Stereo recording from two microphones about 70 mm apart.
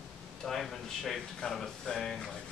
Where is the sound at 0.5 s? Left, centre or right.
Centre.